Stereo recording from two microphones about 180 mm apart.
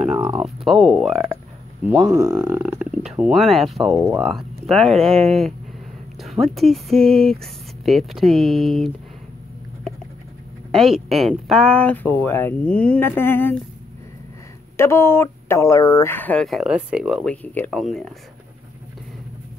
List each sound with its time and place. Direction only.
0.0 s speech: 5° right (ahead or behind)
2.0 s speech: 15° right (ahead or behind); by 8.9 s centre (ahead or behind)
10.7 s speech: centre (ahead or behind)
14.8 s speech: 15° left (ahead or behind)